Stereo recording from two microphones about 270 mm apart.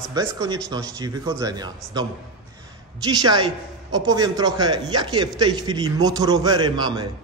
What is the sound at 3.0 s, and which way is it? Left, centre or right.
A man's voice, centre.